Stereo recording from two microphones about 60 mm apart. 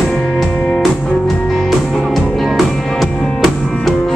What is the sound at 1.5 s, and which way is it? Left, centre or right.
Music, centre.